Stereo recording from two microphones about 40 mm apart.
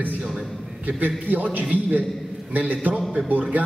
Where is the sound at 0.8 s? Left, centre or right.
Right.